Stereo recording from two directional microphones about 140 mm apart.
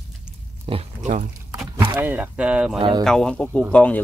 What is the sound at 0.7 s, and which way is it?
Speech, 40° right (ahead or behind).